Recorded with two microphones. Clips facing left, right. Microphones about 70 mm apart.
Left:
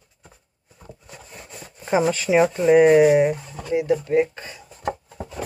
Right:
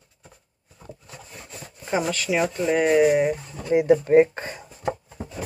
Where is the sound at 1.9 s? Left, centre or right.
Centre.